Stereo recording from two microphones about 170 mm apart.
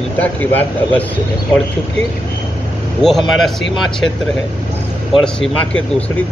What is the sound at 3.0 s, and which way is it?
Speech, centre (ahead or behind).